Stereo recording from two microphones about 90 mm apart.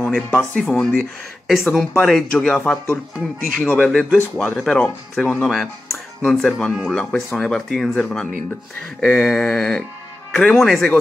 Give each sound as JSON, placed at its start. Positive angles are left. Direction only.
{"t": 0.0, "sound": "speech", "side_deg": 10}
{"t": 3.2, "sound": "speech", "side_deg": 10}
{"t": 6.2, "sound": "speech", "side_deg": 5}